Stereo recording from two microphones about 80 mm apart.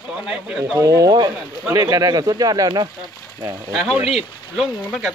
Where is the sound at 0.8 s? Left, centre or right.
Right.